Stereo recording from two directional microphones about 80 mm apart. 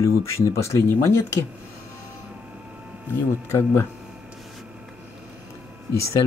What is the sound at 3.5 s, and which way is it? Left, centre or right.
Speech, left.